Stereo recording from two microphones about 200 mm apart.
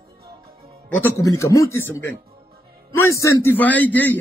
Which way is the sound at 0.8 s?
10° left (ahead or behind).